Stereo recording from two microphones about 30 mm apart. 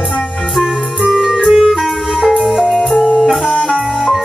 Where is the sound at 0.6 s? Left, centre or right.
Centre.